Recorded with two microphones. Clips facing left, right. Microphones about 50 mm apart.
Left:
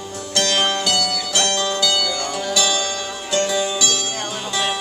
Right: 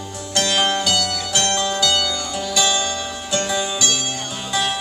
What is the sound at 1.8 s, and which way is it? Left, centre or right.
Zither, centre.